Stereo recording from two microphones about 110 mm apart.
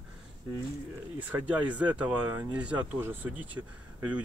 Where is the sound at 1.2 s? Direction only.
15° right (ahead or behind).